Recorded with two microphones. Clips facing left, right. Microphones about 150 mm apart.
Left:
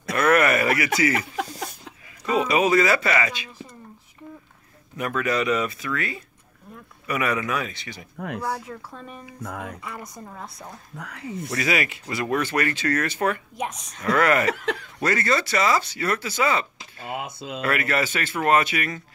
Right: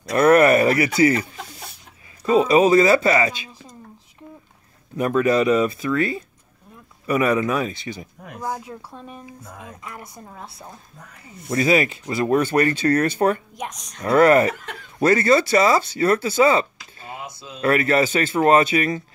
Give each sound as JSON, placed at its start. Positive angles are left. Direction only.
{"t": 0.1, "sound": "a sound", "side_deg": -35}
{"t": 2.2, "sound": "speech", "side_deg": -30}
{"t": 4.9, "sound": "speech", "side_deg": -30}
{"t": 8.2, "sound": "speech", "side_deg": 70}
{"t": 9.9, "sound": "a woman's voice", "side_deg": -5}
{"t": 11.0, "sound": "speech", "side_deg": 85}
{"t": 11.4, "sound": "speech", "side_deg": -35}
{"t": 13.6, "sound": "a woman's voice", "side_deg": 5}
{"t": 14.0, "sound": "speech", "side_deg": -35}
{"t": 14.5, "sound": "speech", "side_deg": 90}
{"t": 15.0, "sound": "speech", "side_deg": -30}